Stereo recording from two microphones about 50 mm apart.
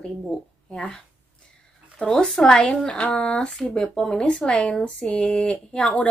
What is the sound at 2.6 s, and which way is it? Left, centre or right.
A woman's voice, left.